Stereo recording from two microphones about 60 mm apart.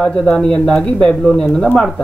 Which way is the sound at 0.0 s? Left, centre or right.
Centre.